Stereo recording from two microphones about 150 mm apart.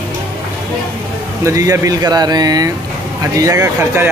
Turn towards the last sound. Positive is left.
turn(degrees=-15)  # may be behind; listen again after turning